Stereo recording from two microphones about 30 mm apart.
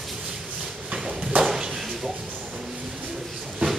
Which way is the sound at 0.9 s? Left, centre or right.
Right.